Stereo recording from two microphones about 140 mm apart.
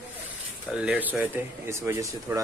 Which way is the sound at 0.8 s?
10° right (ahead or behind).